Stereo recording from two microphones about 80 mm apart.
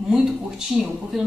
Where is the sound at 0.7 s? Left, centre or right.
Centre.